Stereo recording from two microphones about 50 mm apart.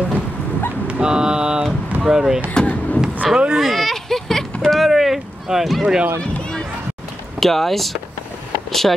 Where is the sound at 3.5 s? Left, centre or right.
Centre.